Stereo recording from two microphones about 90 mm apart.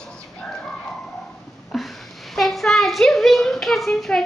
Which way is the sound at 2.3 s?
Centre (ahead or behind).